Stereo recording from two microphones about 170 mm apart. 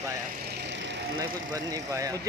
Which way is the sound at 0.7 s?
90° right.